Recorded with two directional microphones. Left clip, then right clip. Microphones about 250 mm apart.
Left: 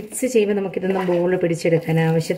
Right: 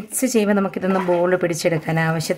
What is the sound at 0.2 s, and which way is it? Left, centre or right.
Speech, right.